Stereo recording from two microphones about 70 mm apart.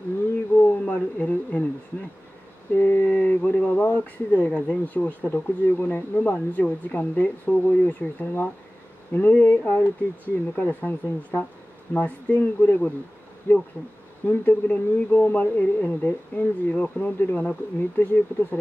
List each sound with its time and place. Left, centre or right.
0.6 s speech: left
2.7 s speech: left